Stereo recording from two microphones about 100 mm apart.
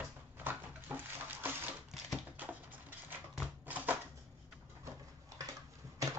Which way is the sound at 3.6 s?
15° right (ahead or behind).